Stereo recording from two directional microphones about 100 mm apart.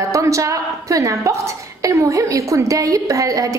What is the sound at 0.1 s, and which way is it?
A woman's voice, 35° right (ahead or behind).